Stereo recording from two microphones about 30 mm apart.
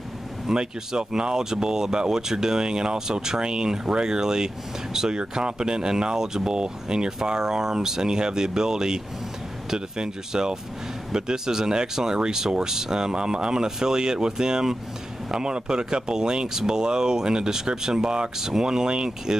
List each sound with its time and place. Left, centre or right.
0.6 s speech: right